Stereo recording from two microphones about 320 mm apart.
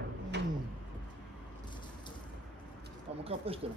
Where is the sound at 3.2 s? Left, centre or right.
Centre.